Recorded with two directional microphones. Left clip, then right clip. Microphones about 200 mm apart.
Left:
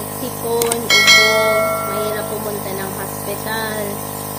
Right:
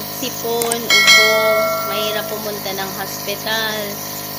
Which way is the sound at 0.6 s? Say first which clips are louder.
Even; centre (ahead or behind).